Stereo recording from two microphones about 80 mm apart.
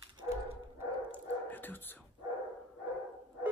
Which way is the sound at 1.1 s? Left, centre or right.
Left.